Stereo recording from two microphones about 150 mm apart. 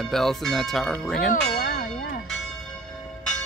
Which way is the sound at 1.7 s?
70° left (ahead or behind).